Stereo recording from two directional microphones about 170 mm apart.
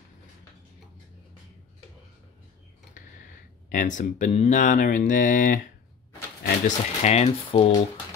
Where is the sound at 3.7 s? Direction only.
50° left (ahead or behind).